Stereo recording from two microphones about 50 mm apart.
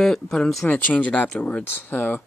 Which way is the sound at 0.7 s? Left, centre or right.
Left.